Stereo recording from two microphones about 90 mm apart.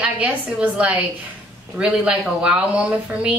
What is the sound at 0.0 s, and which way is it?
A woman's voice, 15° right (ahead or behind).